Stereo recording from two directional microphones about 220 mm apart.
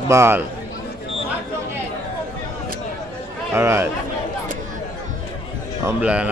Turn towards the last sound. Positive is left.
turn(degrees=-5)  # may be behind; listen again after turning